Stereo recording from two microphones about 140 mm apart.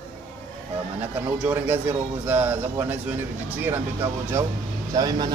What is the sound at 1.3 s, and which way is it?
A man's voice, 10° right (ahead or behind).